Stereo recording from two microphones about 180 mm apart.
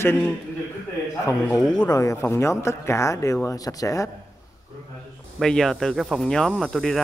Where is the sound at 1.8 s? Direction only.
20° left (ahead or behind).